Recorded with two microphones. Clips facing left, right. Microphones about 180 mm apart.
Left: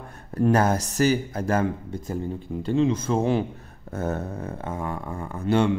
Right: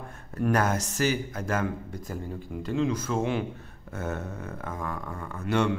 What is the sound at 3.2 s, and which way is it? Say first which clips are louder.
Speech: left 5 dB; 35° left (ahead or behind).